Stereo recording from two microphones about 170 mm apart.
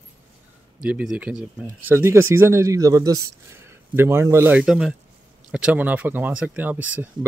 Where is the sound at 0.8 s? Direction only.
5° right (ahead or behind).